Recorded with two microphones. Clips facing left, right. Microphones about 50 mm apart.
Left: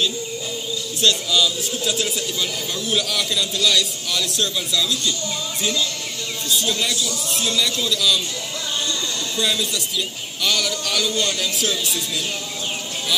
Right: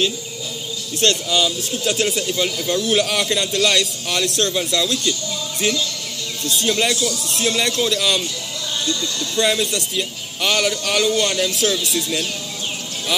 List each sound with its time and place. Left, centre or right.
1.0 s speech: right
6.4 s speech: right
9.4 s a man's voice: right